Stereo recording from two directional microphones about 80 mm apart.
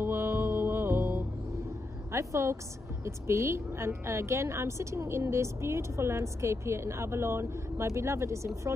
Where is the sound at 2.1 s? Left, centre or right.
Right.